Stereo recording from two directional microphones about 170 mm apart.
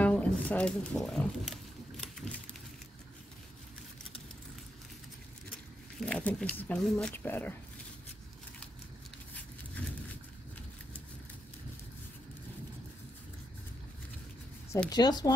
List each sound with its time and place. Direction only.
0.0 s wild animals: 10° left (ahead or behind)
5.9 s speech: 5° left (ahead or behind)
14.9 s speech: 25° left (ahead or behind)